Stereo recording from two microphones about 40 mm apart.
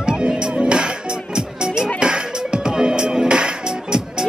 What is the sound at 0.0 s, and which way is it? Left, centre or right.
Music, right.